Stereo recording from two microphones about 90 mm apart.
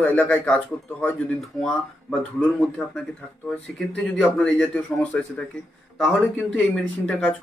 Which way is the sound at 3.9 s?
10° left (ahead or behind).